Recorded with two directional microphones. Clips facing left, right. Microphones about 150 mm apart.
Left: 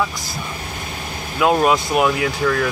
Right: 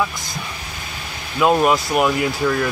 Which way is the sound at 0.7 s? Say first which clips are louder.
Left 4 dB; 45° left (ahead or behind).